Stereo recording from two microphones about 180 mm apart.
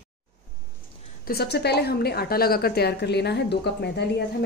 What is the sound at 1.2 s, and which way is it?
A woman's voice, 60° left (ahead or behind).